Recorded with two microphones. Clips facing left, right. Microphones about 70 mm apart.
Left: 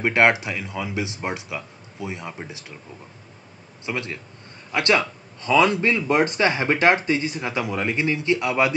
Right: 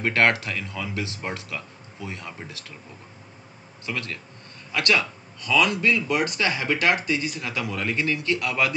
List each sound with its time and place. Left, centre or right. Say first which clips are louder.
0.0 s speech: left 3 dB; centre
3.8 s speech: left 3 dB; left